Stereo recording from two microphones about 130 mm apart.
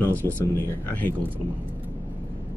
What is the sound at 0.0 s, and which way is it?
A man's voice, 15° left (ahead or behind).